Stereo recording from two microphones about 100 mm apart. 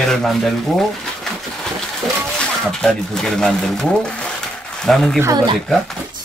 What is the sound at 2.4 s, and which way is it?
Speech, 5° left (ahead or behind).